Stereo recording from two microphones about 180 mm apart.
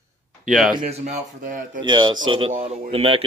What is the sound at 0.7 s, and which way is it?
Speech, 35° right (ahead or behind).